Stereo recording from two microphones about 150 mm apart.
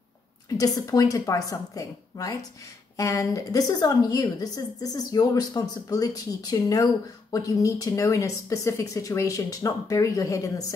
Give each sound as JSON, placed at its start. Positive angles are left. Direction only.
{"t": 0.5, "sound": "a woman's voice", "side_deg": 25}